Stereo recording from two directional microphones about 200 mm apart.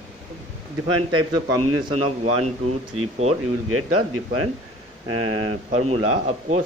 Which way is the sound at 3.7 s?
90° right.